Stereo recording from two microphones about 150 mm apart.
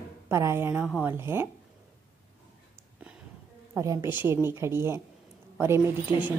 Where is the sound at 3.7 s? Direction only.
20° right (ahead or behind).